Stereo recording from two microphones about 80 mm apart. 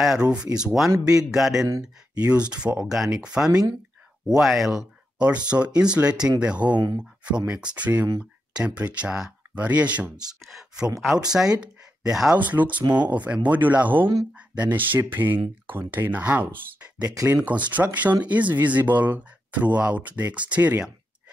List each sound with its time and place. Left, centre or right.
0.0 s a man's voice: centre
1.7 s speech: right
2.5 s a man's voice: centre
11.0 s a man's voice: centre
12.4 s speech: right